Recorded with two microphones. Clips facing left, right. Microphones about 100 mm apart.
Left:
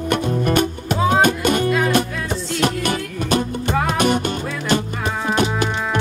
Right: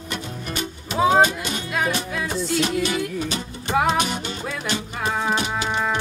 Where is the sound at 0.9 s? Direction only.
Centre (ahead or behind).